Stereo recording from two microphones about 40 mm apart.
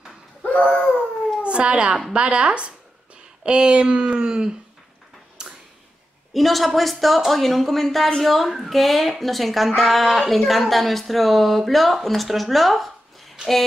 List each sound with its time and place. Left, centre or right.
0.5 s a sound: left
1.4 s a child's voice: right
6.3 s speech: centre